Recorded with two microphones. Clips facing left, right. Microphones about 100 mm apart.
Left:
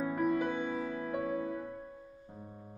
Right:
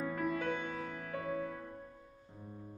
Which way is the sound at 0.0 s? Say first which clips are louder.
Left 5 dB; 15° left (ahead or behind).